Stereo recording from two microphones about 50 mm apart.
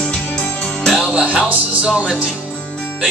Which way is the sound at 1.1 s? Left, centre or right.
Right.